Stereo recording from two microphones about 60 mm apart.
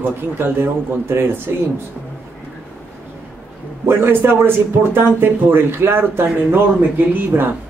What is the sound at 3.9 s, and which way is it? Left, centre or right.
Speech, right.